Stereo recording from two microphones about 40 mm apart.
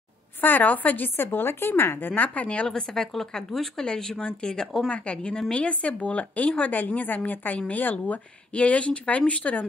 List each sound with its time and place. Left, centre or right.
0.4 s speech: left
1.2 s speech: left
2.1 s speech: left
2.7 s speech: centre
4.9 s speech: left